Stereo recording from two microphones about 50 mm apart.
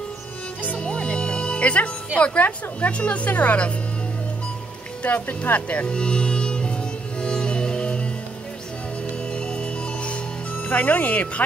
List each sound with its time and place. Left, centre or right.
0.7 s music: centre
2.1 s a woman's voice: left
5.0 s music: left; by 8.1 s centre
9.3 s music: left